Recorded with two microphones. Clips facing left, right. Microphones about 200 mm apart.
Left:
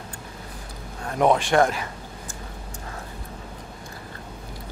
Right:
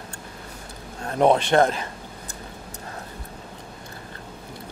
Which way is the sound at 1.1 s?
30° right (ahead or behind).